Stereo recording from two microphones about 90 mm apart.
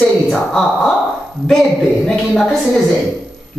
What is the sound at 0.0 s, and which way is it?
A woman's voice, 5° left (ahead or behind).